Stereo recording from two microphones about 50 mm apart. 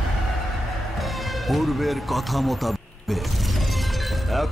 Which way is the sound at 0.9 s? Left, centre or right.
Centre.